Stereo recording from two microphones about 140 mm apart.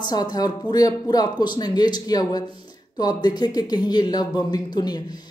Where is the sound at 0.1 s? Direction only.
30° left (ahead or behind).